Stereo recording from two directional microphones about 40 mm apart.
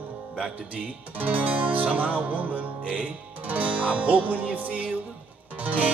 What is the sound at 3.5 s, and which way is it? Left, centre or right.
Music, right.